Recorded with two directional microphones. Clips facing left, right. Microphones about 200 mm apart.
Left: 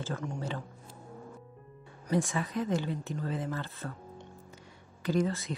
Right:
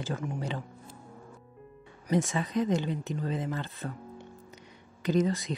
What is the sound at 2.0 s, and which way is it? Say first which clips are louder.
Speech: right 2 dB; 20° right (ahead or behind).